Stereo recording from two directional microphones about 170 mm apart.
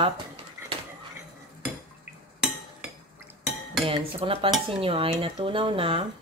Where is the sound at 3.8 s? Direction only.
35° right (ahead or behind).